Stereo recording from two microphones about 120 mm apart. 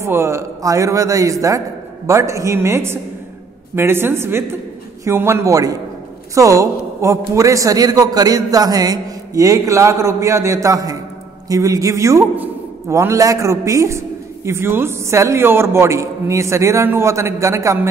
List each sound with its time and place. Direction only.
0.0 s a man's voice: 20° right (ahead or behind)